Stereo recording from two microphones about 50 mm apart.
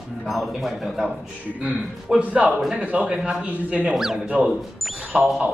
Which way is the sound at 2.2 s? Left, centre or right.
Right.